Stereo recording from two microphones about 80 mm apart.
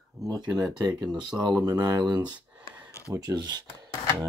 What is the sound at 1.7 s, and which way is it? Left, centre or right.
Speech, right.